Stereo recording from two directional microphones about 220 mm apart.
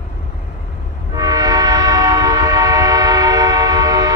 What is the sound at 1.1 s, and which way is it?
Train, 15° right (ahead or behind).